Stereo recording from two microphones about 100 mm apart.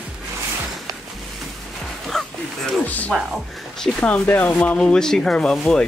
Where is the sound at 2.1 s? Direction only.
5° left (ahead or behind).